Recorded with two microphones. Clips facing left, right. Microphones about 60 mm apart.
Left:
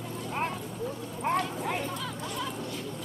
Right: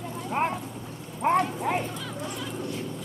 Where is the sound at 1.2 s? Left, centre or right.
Right.